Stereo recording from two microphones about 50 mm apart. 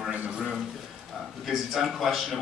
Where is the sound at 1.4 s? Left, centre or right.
Centre.